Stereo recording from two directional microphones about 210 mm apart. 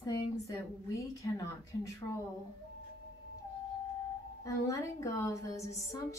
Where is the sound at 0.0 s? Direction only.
15° left (ahead or behind).